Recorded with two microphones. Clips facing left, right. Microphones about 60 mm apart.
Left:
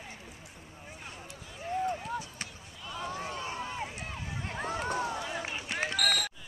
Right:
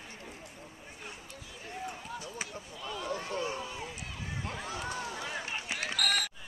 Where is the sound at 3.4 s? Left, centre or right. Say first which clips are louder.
Even; left.